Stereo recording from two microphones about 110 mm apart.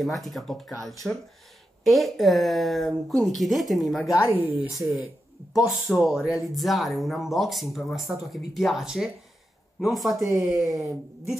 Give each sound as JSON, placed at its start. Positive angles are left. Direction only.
{"t": 0.0, "sound": "speech", "side_deg": 0}
{"t": 4.3, "sound": "speech", "side_deg": -20}
{"t": 4.6, "sound": "speech", "side_deg": 0}
{"t": 10.3, "sound": "speech", "side_deg": -25}